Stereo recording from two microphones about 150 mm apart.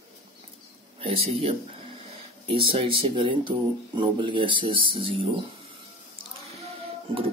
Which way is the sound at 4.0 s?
30° right (ahead or behind).